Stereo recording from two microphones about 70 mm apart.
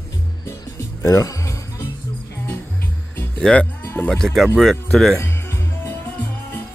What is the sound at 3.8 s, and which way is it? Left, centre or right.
Music, left.